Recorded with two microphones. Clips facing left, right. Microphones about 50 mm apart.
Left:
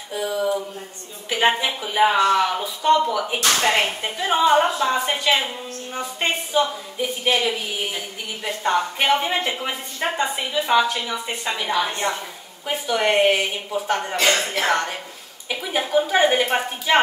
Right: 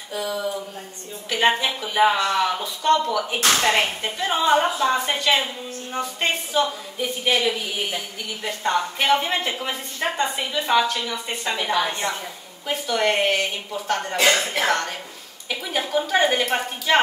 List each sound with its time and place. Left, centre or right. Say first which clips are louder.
0.1 s speech: left 4 dB; centre
12.0 s a woman's voice: left 2 dB; left
12.6 s speech: left 1 dB; centre
14.1 s speech: right 2 dB; centre